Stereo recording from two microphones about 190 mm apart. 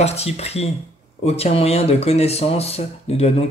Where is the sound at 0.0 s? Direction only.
35° left (ahead or behind).